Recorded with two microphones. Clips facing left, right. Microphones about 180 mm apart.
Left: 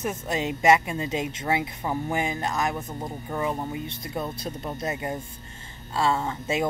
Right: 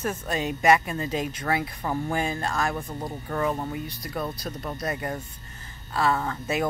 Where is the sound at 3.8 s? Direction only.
25° left (ahead or behind).